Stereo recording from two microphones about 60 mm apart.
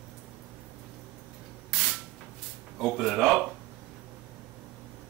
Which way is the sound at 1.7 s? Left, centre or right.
Centre.